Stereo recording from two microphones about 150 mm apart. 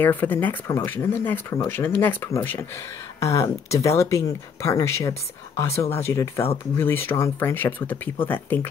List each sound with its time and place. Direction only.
0.0 s speech: 10° left (ahead or behind)